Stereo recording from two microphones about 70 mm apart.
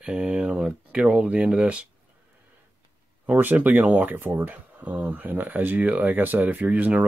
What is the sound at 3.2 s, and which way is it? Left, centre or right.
Speech, right.